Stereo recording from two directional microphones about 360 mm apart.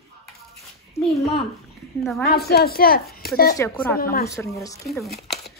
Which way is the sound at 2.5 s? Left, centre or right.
Left.